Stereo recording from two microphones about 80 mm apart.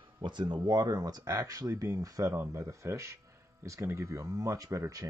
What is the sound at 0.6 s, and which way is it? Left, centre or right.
Speech, right.